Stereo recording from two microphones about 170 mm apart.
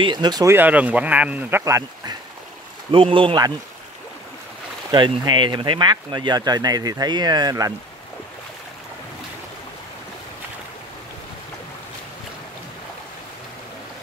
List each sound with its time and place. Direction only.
0.0 s speech: 25° right (ahead or behind)
0.6 s speech: 10° right (ahead or behind)
2.9 s speech: 30° right (ahead or behind)
4.9 s speech: 25° right (ahead or behind)